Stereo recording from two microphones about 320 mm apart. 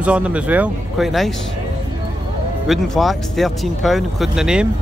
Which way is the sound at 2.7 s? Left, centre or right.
Centre.